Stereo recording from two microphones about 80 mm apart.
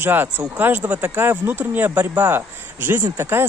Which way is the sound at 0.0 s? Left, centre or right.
Right.